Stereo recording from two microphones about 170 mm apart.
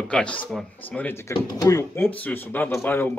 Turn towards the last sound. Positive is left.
turn(degrees=15)  # may be behind; listen again after turning